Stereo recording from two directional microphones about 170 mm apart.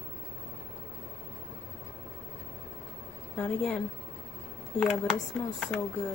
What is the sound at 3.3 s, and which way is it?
Speech, 5° left (ahead or behind).